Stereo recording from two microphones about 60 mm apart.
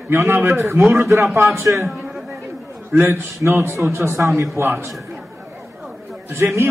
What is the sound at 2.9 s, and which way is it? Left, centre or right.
A man's voice, right.